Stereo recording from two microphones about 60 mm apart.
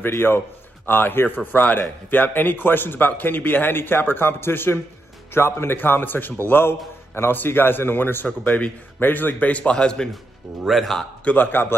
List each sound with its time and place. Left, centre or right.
0.8 s a man's voice: left
8.3 s a man's voice: left
10.6 s a man's voice: centre
11.2 s a man's voice: left